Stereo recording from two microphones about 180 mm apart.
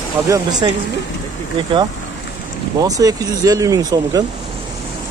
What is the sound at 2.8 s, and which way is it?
Speech, 20° right (ahead or behind).